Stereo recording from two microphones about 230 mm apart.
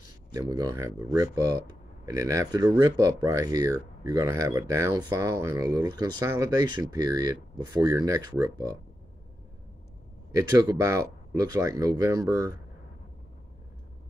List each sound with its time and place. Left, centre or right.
0.3 s speech: centre
10.3 s speech: centre